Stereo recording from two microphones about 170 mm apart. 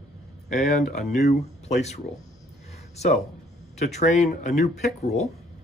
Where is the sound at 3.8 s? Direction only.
40° left (ahead or behind).